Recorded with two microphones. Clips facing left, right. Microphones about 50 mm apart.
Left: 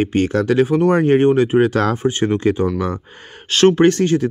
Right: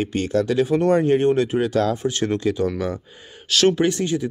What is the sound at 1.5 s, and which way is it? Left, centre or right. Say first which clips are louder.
Speech: left 5 dB; left.